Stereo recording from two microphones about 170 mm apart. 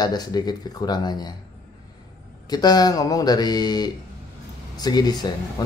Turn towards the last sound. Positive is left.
turn(degrees=25)  # may be behind; listen again after turning